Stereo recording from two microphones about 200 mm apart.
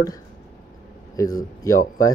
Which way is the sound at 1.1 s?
15° left (ahead or behind).